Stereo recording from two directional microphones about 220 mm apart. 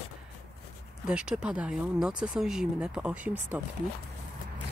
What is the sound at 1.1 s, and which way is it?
Speech, 5° right (ahead or behind).